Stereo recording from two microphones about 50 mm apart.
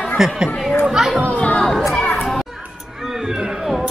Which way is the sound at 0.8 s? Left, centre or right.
Centre.